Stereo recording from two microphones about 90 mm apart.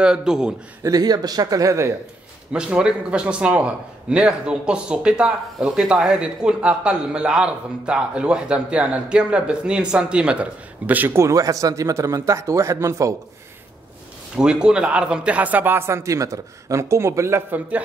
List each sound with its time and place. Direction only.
0.0 s a man's voice: 10° right (ahead or behind)
0.8 s a man's voice: 45° right (ahead or behind)
2.5 s a man's voice: 10° right (ahead or behind)
11.1 s speech: 35° right (ahead or behind)
14.3 s a man's voice: 10° right (ahead or behind); by 17.6 s 30° right (ahead or behind)